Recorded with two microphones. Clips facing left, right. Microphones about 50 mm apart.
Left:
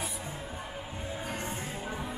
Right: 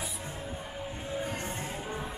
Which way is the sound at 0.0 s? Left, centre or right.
Centre.